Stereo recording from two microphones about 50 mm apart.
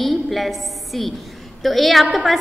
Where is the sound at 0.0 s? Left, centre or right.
Centre.